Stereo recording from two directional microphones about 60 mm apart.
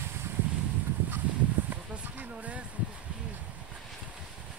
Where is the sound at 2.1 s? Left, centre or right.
Right.